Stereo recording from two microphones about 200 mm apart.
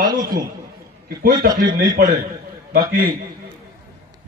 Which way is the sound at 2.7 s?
45° right (ahead or behind).